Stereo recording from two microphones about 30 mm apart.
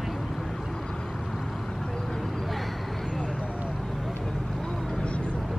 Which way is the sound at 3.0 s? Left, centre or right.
Right.